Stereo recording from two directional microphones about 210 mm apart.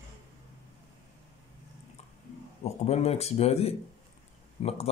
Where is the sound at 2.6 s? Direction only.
30° left (ahead or behind).